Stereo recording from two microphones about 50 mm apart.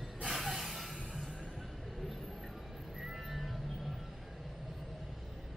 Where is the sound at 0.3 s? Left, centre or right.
Centre.